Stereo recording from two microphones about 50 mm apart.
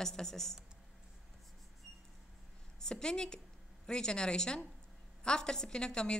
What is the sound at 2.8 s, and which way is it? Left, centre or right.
A woman's voice, centre.